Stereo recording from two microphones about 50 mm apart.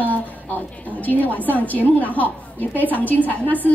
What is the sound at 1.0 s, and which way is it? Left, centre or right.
A woman's voice, left.